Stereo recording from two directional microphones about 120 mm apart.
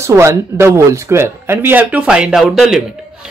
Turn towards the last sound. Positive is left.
turn(degrees=-5)  # may be behind; listen again after turning